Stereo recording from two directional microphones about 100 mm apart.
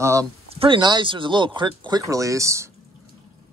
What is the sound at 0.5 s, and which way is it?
Speech, 55° right (ahead or behind).